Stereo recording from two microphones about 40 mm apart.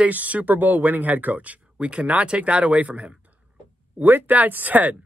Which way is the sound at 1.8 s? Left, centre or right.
Right.